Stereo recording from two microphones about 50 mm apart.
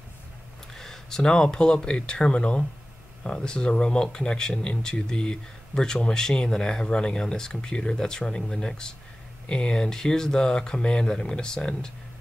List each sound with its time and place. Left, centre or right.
0.7 s speech: centre